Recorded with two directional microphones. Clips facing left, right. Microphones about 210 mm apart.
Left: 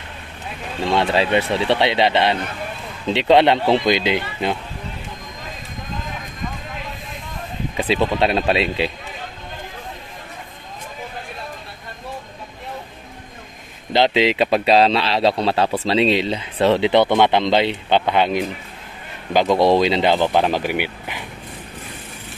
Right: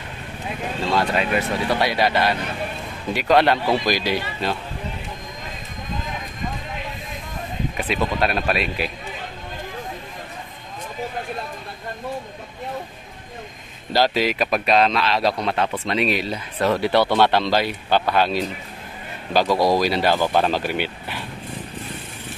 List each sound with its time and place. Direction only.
0.9 s speech: 30° left (ahead or behind)
7.7 s speech: 30° left (ahead or behind)
13.9 s speech: 20° left (ahead or behind)